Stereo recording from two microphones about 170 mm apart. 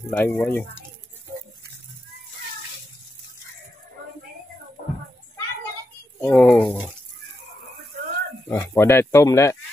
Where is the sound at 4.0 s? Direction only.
55° right (ahead or behind).